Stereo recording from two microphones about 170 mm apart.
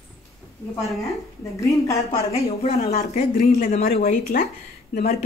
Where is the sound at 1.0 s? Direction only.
15° left (ahead or behind).